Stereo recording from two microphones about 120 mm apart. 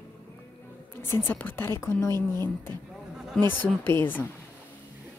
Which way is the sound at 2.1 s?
35° right (ahead or behind).